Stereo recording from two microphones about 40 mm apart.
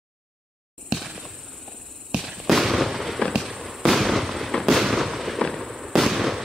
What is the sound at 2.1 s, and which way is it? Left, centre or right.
Fireworks, centre.